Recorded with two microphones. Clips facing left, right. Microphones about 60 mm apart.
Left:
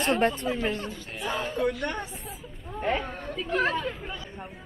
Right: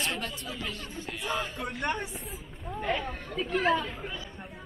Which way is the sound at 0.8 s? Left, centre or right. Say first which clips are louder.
Left 2 dB; left.